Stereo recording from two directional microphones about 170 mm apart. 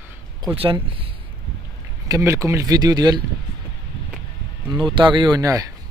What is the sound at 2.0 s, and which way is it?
Speech, 20° right (ahead or behind).